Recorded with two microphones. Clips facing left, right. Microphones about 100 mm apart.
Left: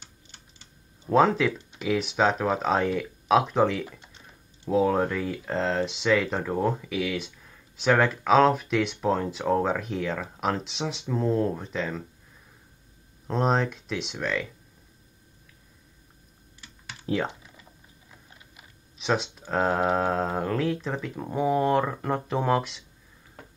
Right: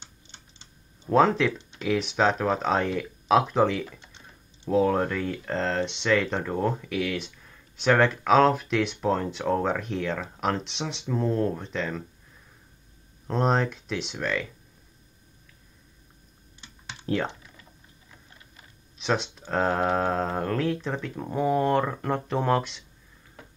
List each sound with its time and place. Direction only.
0.0 s typing: 25° right (ahead or behind)
1.0 s speech: centre (ahead or behind)
3.8 s speech: 10° left (ahead or behind)
13.3 s speech: centre (ahead or behind)
16.6 s typing: 25° right (ahead or behind)
17.0 s speech: 5° left (ahead or behind)
18.9 s speech: centre (ahead or behind)